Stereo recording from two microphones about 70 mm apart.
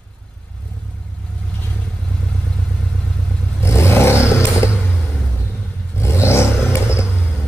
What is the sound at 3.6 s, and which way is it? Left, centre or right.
Vehicle, left.